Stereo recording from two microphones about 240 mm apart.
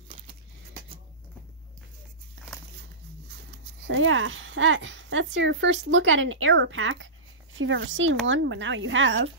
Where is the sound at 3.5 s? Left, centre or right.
Right.